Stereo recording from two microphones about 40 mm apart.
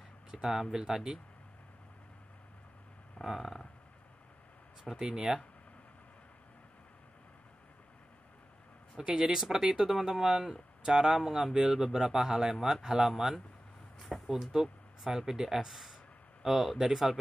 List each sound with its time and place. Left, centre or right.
0.3 s speech: centre
3.3 s a sound: centre
4.9 s speech: centre
8.9 s speech: centre